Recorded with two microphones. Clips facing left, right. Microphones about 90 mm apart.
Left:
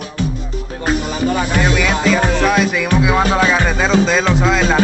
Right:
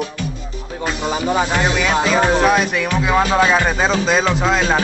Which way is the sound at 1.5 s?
5° right (ahead or behind).